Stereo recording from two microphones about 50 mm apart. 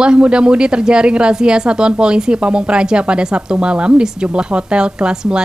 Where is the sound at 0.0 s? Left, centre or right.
Centre.